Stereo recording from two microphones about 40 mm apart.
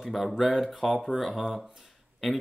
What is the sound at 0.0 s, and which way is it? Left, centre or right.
Speech, centre.